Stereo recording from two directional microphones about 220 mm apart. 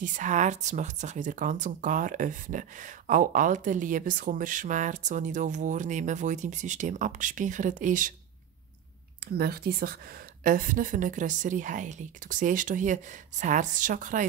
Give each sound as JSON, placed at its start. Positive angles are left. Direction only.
{"t": 0.0, "sound": "speech", "side_deg": -35}
{"t": 9.2, "sound": "speech", "side_deg": -45}